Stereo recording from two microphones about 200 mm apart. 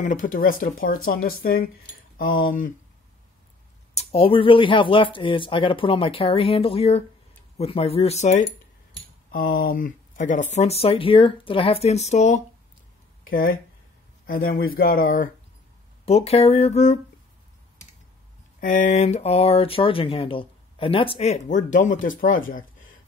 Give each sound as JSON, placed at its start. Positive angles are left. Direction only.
{"t": 0.0, "sound": "speech", "side_deg": 40}
{"t": 3.9, "sound": "speech", "side_deg": 30}
{"t": 9.6, "sound": "speech", "side_deg": 45}
{"t": 14.2, "sound": "speech", "side_deg": 45}
{"t": 16.1, "sound": "speech", "side_deg": 30}
{"t": 18.6, "sound": "speech", "side_deg": 40}